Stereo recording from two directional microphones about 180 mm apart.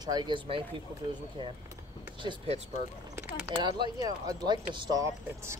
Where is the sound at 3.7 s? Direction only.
25° right (ahead or behind).